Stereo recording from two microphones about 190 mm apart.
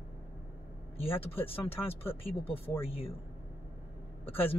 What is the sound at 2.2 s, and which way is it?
Speech, 30° left (ahead or behind).